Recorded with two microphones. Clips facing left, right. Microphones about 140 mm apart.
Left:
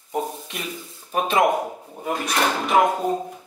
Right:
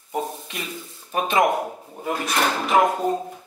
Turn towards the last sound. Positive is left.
turn(degrees=0)  # may be behind; listen again after turning